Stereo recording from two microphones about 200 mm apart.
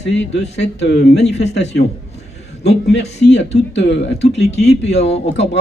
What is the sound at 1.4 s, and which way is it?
Speech, 35° left (ahead or behind).